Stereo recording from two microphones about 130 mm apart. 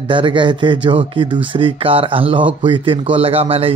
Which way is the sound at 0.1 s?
40° right (ahead or behind).